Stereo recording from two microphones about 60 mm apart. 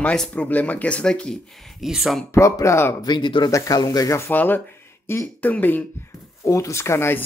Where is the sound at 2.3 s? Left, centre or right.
Left.